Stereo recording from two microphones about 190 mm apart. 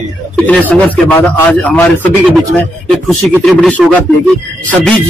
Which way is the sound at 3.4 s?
5° left (ahead or behind).